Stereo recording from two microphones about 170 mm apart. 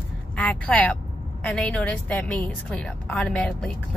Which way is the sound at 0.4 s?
5° left (ahead or behind).